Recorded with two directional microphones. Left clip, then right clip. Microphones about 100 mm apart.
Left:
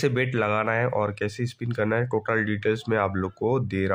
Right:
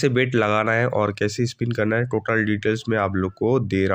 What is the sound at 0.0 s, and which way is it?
Speech, 25° right (ahead or behind).